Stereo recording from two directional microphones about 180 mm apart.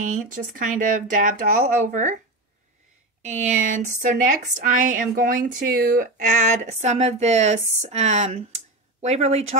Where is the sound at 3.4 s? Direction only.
45° right (ahead or behind).